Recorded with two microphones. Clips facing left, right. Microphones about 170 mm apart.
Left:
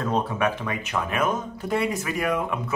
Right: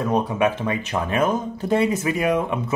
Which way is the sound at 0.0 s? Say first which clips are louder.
Right 4 dB; 15° right (ahead or behind).